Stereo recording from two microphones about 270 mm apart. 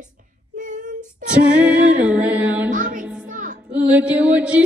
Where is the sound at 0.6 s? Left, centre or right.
Right.